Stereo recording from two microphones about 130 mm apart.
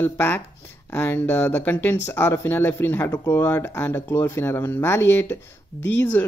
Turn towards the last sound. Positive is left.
turn(degrees=10)  # may be behind; listen again after turning